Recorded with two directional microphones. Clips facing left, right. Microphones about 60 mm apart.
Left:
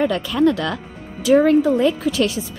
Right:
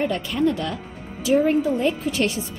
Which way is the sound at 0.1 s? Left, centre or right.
Left.